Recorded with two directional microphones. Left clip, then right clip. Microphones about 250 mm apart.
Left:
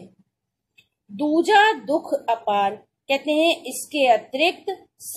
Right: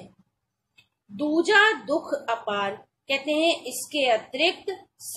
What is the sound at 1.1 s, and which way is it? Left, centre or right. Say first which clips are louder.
A woman's voice: left 3 dB; centre.